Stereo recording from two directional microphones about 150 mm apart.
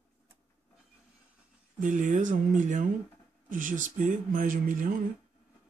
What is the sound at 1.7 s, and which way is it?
Speech, 60° right (ahead or behind).